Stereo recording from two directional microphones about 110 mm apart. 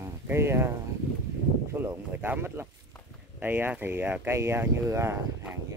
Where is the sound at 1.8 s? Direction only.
20° right (ahead or behind).